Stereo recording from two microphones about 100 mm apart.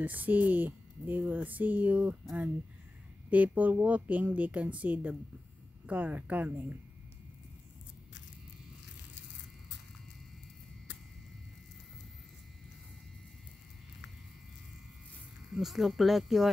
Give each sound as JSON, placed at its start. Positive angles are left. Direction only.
{"t": 0.0, "sound": "speech", "side_deg": -15}
{"t": 3.3, "sound": "speech", "side_deg": -15}
{"t": 15.5, "sound": "speech", "side_deg": 0}